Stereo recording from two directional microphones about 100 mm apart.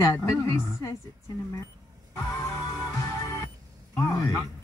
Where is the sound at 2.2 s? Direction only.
25° left (ahead or behind).